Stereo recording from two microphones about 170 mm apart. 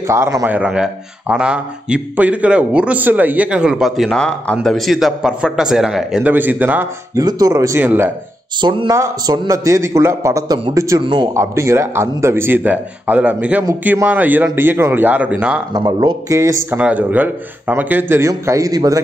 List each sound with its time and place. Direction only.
0.0 s a man's voice: 15° right (ahead or behind)
7.2 s a man's voice: 20° right (ahead or behind)
8.5 s a man's voice: 25° right (ahead or behind)
11.3 s a man's voice: 15° right (ahead or behind)
15.7 s a man's voice: 25° right (ahead or behind)